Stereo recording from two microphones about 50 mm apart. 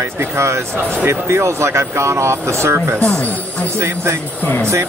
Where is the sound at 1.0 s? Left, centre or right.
Right.